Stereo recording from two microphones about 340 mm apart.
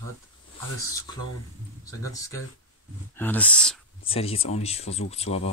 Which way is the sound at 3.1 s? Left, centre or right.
Centre.